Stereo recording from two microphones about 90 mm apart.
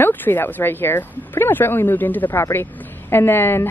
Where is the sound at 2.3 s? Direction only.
30° left (ahead or behind).